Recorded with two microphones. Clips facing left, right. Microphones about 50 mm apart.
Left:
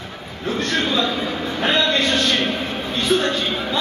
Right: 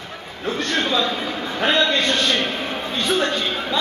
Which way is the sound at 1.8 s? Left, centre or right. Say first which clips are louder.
Left 1 dB; centre.